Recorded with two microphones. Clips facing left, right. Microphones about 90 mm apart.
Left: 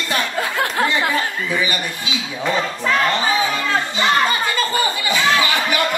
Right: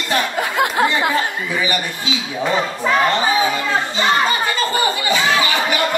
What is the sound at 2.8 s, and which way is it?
Chatter, 15° right (ahead or behind).